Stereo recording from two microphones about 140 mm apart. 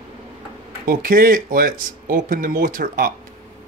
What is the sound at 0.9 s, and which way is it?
Speech, 90° right.